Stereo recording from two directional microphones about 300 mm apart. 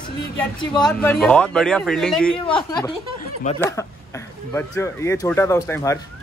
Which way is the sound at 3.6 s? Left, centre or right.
Centre.